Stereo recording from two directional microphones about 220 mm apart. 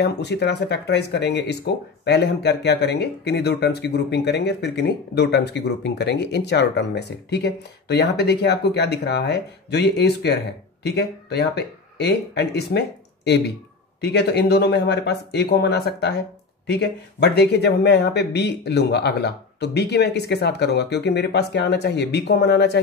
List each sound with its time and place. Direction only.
0.0 s speech: 50° left (ahead or behind)